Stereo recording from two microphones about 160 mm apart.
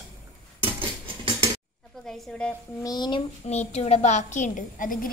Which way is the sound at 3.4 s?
40° left (ahead or behind).